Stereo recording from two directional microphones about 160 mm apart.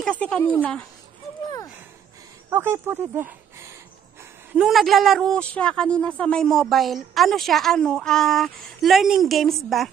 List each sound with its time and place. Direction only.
0.0 s speech: 5° left (ahead or behind)
2.5 s speech: 15° right (ahead or behind)
4.6 s a woman's voice: centre (ahead or behind)